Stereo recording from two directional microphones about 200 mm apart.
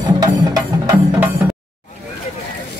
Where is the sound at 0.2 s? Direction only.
20° right (ahead or behind).